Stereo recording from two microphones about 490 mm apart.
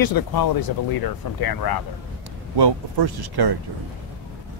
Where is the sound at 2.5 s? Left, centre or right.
Right.